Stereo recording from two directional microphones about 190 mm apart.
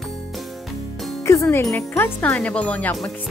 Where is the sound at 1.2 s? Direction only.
15° left (ahead or behind).